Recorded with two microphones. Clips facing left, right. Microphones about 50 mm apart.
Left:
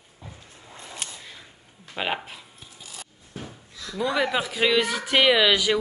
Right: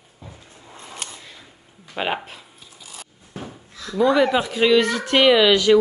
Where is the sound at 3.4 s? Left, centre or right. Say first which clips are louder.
Right 4 dB; right.